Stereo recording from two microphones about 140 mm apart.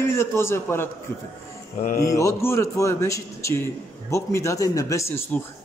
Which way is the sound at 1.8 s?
85° left.